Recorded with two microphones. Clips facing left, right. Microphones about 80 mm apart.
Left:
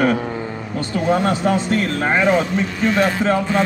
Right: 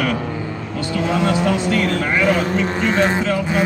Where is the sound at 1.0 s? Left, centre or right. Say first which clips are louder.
Left 1 dB; right.